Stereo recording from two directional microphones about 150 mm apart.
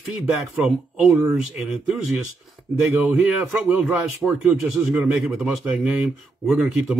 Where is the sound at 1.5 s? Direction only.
5° right (ahead or behind).